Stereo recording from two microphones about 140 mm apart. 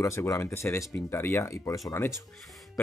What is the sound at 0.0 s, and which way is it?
Speech, 20° left (ahead or behind).